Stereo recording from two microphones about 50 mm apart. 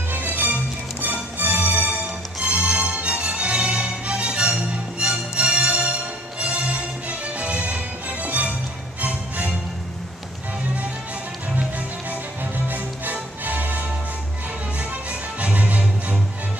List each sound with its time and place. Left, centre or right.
0.1 s music: right
12.6 s music: right
15.4 s music: right